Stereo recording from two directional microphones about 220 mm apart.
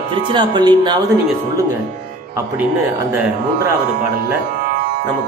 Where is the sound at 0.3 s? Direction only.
20° right (ahead or behind).